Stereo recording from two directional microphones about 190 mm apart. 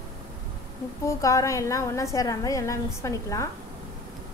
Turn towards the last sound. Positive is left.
turn(degrees=15)  # may be behind; listen again after turning